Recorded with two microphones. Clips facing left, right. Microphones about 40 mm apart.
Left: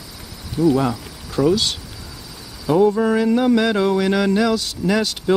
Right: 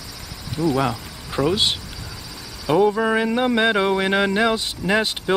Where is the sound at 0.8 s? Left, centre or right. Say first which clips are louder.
Left 2 dB; right.